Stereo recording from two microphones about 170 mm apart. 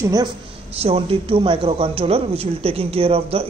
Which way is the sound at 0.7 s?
35° right (ahead or behind).